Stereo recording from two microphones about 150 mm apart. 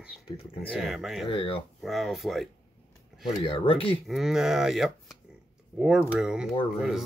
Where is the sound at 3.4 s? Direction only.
40° left (ahead or behind).